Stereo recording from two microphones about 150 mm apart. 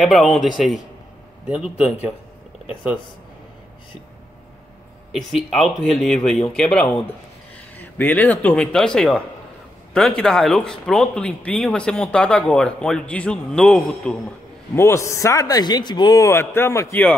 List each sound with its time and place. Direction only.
0.0 s speech: centre (ahead or behind)
1.5 s a man's voice: 5° right (ahead or behind)
5.1 s speech: centre (ahead or behind)
14.8 s a man's voice: 20° left (ahead or behind)